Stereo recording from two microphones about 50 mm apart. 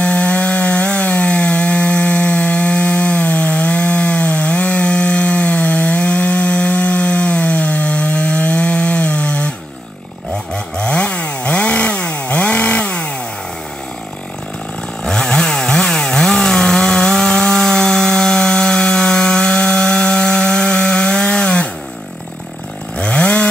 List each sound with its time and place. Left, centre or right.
0.0 s wood: left
10.5 s chainsaw: centre
15.0 s chainsaw: centre
22.9 s chainsaw: left